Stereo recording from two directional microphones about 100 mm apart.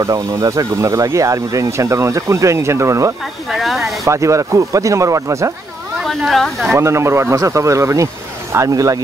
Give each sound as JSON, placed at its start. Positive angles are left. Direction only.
{"t": 0.0, "sound": "speech", "side_deg": -35}
{"t": 3.4, "sound": "speech", "side_deg": 0}
{"t": 4.0, "sound": "speech", "side_deg": -30}
{"t": 6.0, "sound": "speech", "side_deg": 0}
{"t": 6.7, "sound": "speech", "side_deg": -30}